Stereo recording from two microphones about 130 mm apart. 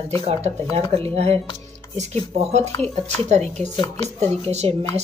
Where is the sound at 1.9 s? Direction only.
60° right (ahead or behind).